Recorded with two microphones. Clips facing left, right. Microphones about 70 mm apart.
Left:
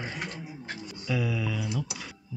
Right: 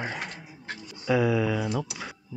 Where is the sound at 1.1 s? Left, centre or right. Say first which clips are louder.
Right 7 dB; right.